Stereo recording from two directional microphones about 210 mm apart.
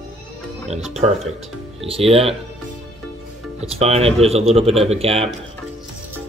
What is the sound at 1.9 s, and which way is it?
Speech, 25° right (ahead or behind).